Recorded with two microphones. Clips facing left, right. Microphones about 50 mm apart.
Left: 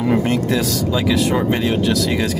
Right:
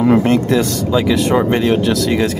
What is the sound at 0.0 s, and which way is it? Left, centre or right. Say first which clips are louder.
Speech: right 5 dB; centre.